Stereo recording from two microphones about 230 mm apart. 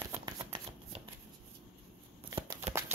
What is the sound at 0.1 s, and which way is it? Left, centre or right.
Shuffling cards, centre.